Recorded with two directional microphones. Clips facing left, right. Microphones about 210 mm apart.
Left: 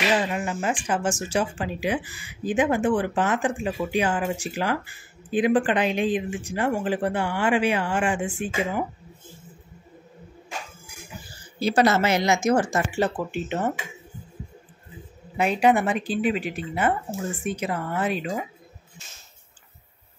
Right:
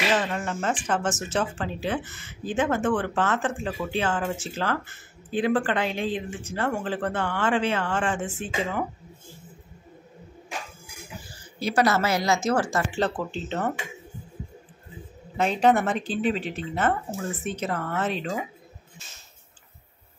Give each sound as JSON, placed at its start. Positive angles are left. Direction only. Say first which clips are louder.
{"t": 0.1, "sound": "speech", "louder": "left 1 dB", "side_deg": 10}
{"t": 11.6, "sound": "a woman's voice", "louder": "left 3 dB", "side_deg": 25}
{"t": 15.3, "sound": "speech", "louder": "left 1 dB", "side_deg": 10}